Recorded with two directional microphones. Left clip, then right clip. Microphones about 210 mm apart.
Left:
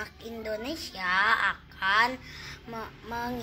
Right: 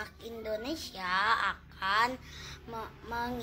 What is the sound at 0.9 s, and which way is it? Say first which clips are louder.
Speech: left 4 dB; centre (ahead or behind).